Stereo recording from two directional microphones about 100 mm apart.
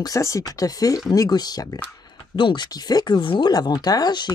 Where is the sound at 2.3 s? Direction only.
50° left (ahead or behind).